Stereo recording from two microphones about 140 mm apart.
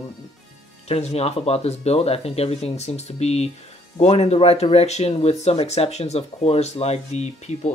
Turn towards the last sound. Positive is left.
turn(degrees=55)  # may be behind; listen again after turning